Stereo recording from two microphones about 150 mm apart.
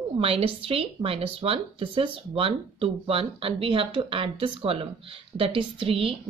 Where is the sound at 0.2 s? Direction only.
40° right (ahead or behind).